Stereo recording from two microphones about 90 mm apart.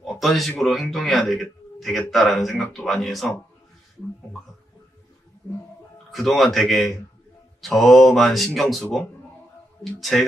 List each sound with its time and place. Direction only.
0.0 s a man's voice: centre (ahead or behind)
6.1 s a man's voice: centre (ahead or behind)
9.9 s a man's voice: centre (ahead or behind)